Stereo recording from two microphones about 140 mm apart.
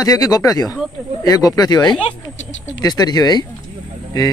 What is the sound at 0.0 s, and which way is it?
Speech, 25° left (ahead or behind).